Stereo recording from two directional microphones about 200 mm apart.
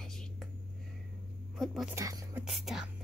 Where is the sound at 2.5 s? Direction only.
Centre (ahead or behind).